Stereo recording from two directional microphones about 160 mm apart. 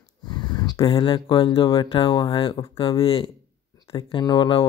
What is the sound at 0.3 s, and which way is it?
Speech, 25° left (ahead or behind).